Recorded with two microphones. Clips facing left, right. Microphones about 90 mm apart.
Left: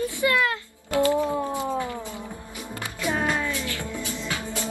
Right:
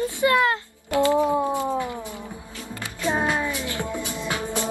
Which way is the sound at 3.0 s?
20° right (ahead or behind).